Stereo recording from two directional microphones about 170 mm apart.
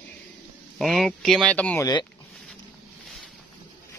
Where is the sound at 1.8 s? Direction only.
25° left (ahead or behind).